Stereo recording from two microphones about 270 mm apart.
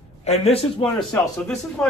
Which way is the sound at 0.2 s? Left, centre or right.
Left.